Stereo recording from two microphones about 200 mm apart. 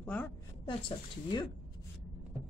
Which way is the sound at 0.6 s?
25° left (ahead or behind).